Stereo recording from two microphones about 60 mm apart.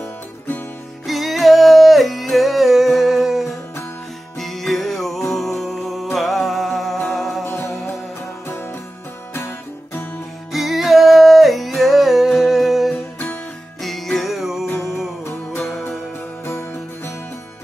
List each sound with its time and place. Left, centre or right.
0.0 s music: left
1.0 s music: centre
8.5 s music: left
10.5 s music: centre
15.2 s music: left